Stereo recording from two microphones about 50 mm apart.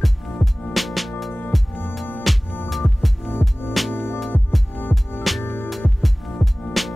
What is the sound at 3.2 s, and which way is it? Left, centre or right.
Music, left.